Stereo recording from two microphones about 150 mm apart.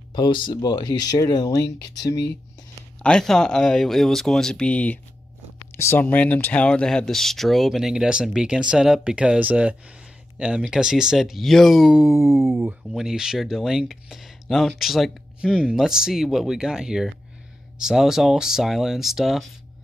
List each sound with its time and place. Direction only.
0.1 s speech: 30° left (ahead or behind)
3.0 s speech: 5° left (ahead or behind)
12.1 s a sound: 20° right (ahead or behind)
12.9 s speech: 5° right (ahead or behind)